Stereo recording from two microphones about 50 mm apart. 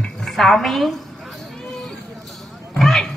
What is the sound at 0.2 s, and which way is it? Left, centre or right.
Speech, centre.